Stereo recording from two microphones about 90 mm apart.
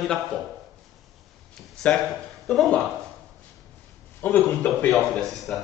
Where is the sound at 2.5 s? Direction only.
5° left (ahead or behind).